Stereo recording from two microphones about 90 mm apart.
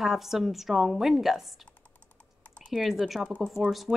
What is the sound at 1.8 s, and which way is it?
Typing, 15° left (ahead or behind).